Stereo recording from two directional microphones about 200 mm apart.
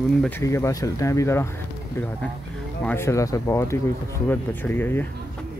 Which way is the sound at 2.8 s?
10° left (ahead or behind).